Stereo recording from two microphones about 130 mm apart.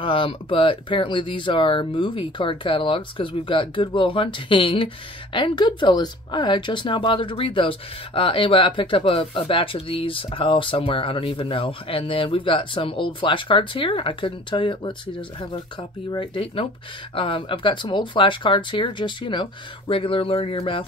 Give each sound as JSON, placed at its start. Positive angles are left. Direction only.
{"t": 0.0, "sound": "speech", "side_deg": 40}
{"t": 16.1, "sound": "speech", "side_deg": 40}